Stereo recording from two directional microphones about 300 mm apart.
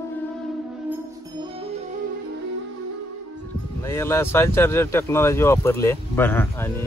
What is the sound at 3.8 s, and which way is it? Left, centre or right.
Speech, centre.